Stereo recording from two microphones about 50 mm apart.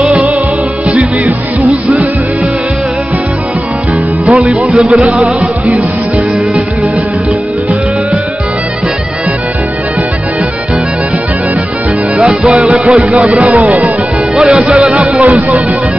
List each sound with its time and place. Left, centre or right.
0.0 s music: right
4.3 s speech: right
12.5 s speech: right
14.3 s speech: centre